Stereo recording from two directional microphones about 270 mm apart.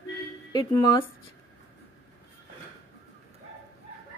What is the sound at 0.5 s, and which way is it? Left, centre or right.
Speech, centre.